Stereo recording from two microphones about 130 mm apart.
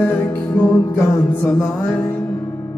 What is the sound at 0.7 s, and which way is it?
Music, 20° left (ahead or behind).